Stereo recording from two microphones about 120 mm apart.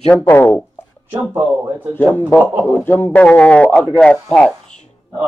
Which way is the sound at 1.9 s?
15° left (ahead or behind).